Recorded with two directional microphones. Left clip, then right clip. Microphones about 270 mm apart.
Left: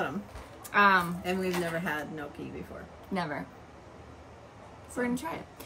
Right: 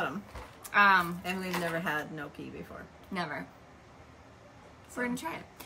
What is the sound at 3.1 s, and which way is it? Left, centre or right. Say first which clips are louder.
Speech: left 2 dB; centre.